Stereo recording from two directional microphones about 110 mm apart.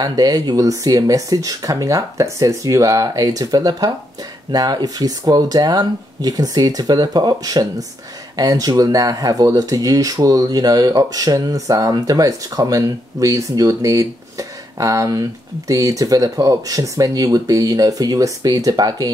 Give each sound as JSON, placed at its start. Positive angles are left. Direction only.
{"t": 0.0, "sound": "speech", "side_deg": -35}